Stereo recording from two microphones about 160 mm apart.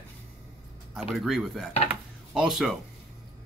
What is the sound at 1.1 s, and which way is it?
Speech, centre (ahead or behind).